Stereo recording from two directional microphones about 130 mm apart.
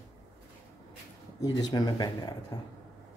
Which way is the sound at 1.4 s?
30° left (ahead or behind).